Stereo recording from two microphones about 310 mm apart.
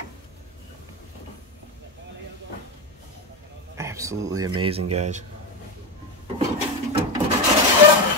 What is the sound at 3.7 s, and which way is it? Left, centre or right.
Speech, centre.